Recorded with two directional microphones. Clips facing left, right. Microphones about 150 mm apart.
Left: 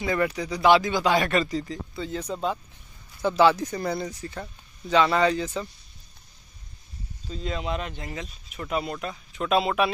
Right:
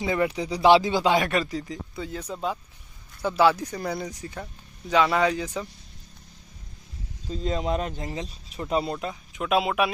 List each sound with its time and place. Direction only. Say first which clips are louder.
0.0 s speech: right 1 dB; 15° right (ahead or behind)
1.1 s speech: even; 10° right (ahead or behind)
7.2 s speech: right 3 dB; 40° right (ahead or behind)
9.0 s speech: even; 15° right (ahead or behind)